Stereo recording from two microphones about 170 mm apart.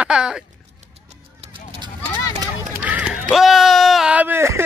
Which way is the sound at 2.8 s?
10° right (ahead or behind).